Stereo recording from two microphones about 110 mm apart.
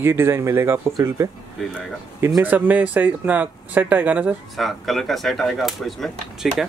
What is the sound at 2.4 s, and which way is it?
Speech, 15° right (ahead or behind).